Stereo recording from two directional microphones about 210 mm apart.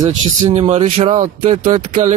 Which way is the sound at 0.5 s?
30° right (ahead or behind).